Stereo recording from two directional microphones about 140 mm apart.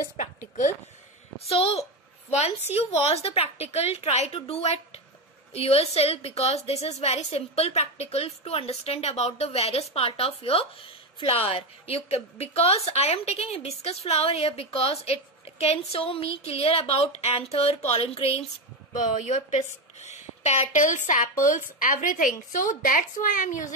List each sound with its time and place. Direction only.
0.2 s a sound: 60° left (ahead or behind)
1.5 s a woman's voice: 45° left (ahead or behind)
19.2 s speech: 60° left (ahead or behind)